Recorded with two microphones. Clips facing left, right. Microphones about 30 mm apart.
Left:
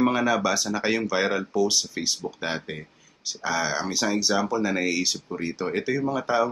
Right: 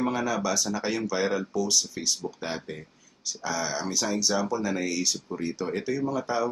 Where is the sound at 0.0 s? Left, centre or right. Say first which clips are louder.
Left 5 dB; left.